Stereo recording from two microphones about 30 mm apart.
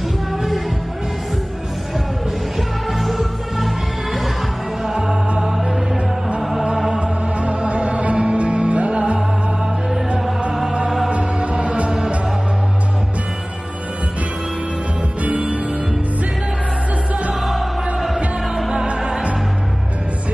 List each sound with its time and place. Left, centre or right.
2.9 s music: centre
4.9 s music: right
7.0 s music: right
11.1 s music: right
15.2 s music: right
17.5 s music: centre